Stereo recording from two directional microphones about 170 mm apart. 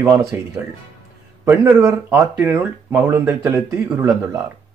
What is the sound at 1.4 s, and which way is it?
Speech, 10° right (ahead or behind).